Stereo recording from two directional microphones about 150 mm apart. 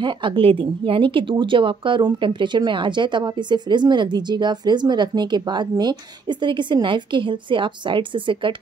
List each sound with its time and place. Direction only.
0.0 s speech: 35° right (ahead or behind)